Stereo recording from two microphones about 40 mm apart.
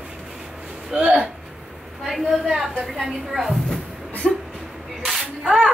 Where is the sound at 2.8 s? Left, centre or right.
Centre.